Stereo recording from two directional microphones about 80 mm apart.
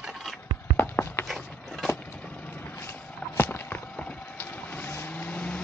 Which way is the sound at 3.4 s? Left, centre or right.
Left.